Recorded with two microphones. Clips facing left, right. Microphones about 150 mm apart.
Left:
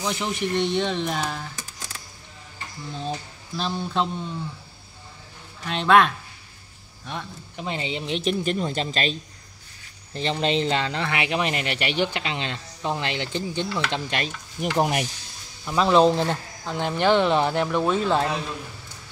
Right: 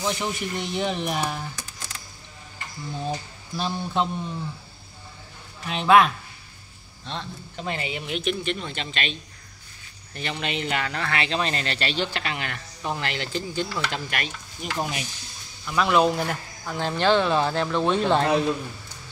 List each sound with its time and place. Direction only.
0.0 s speech: centre (ahead or behind)
2.9 s speech: 10° right (ahead or behind)
5.7 s speech: 5° right (ahead or behind)
7.1 s speech: 15° left (ahead or behind)
14.6 s stir: 60° left (ahead or behind)
15.6 s speech: 30° left (ahead or behind); by 18.3 s 5° left (ahead or behind)